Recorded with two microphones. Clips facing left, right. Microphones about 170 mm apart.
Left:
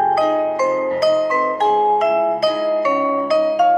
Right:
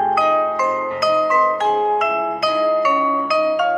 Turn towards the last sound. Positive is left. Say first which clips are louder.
# left 3 dB
turn(degrees=30)  # may be behind; listen again after turning